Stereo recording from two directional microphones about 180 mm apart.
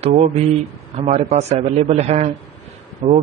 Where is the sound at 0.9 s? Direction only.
35° right (ahead or behind).